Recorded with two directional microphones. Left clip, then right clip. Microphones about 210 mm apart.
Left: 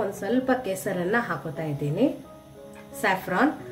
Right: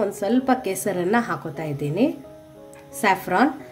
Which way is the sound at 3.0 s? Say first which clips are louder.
Right 4 dB; 50° right (ahead or behind).